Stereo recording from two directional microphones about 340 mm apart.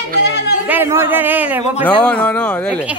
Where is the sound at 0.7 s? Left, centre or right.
Centre.